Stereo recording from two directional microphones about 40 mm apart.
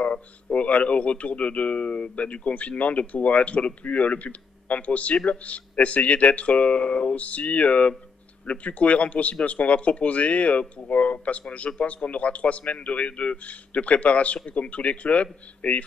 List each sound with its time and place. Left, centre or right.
0.0 s speech: left